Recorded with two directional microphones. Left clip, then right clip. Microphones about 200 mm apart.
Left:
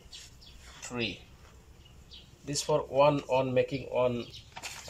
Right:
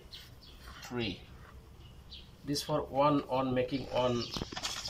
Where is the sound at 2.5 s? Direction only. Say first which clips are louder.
Left 5 dB; 15° left (ahead or behind).